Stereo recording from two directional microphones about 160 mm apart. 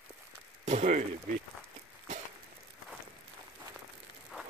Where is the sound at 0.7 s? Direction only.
45° right (ahead or behind).